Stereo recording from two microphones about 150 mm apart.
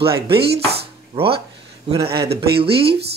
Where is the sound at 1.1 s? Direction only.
35° right (ahead or behind).